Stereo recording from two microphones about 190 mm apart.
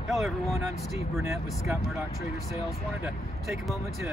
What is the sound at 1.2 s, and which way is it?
Speech, 15° right (ahead or behind).